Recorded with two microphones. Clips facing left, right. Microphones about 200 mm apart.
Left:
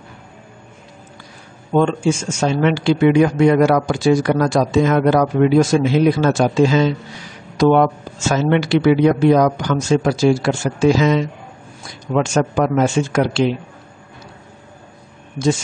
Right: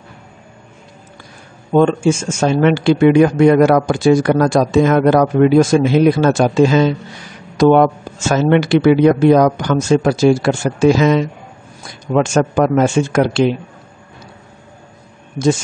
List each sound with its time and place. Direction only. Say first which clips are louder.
1.7 s speech: right 4 dB; 50° right (ahead or behind)
12.1 s speech: right 3 dB; 45° right (ahead or behind)